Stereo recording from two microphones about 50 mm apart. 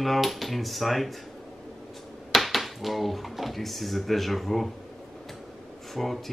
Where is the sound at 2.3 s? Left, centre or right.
Centre.